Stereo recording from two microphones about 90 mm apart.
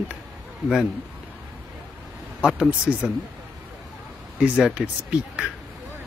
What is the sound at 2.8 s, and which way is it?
Speech, 10° right (ahead or behind).